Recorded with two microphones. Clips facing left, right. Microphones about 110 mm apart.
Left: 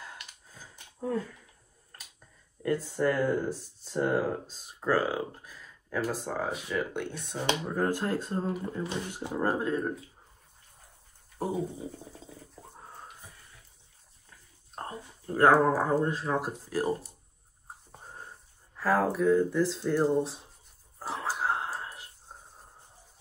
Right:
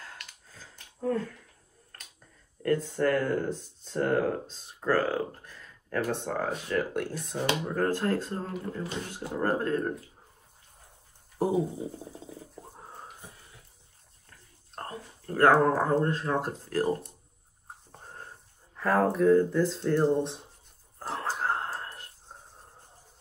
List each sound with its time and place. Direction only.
0.0 s a sound: 15° left (ahead or behind)
2.6 s speech: 5° left (ahead or behind)
7.6 s speech: 10° left (ahead or behind)
11.3 s dog: 10° right (ahead or behind)
12.5 s pig: 5° right (ahead or behind)
14.3 s speech: 10° left (ahead or behind)
17.9 s a sound: 5° left (ahead or behind)
18.8 s speech: centre (ahead or behind)
21.0 s whispering: 5° left (ahead or behind)